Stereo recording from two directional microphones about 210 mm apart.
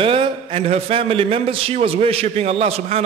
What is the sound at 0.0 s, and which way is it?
A man's voice, 25° right (ahead or behind).